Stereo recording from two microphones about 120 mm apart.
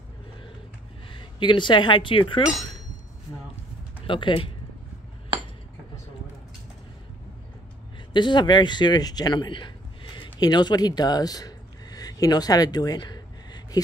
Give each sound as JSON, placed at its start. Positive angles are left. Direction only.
{"t": 1.1, "sound": "a woman's voice", "side_deg": 40}
{"t": 4.1, "sound": "speech", "side_deg": 45}
{"t": 8.1, "sound": "speech", "side_deg": 40}